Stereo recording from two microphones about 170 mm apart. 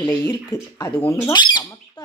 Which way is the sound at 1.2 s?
25° left (ahead or behind).